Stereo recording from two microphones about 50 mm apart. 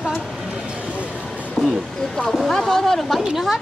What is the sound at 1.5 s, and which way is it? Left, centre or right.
Speech, centre.